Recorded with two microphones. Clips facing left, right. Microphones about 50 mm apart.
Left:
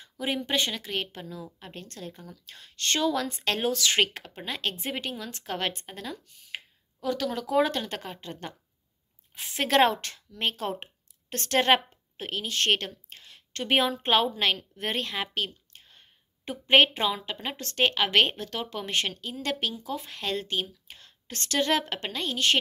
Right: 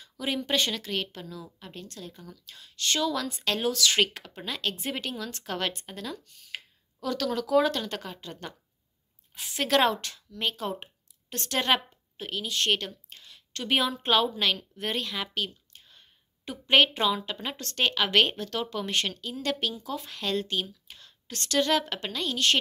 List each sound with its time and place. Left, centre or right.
0.0 s a woman's voice: left